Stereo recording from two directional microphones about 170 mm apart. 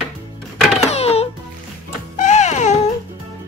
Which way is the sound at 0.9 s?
40° left (ahead or behind).